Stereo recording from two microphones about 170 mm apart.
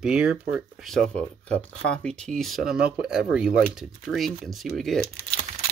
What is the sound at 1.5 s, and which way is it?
Speech, 5° left (ahead or behind).